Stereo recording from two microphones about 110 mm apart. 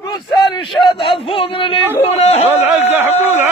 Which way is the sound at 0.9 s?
55° left (ahead or behind).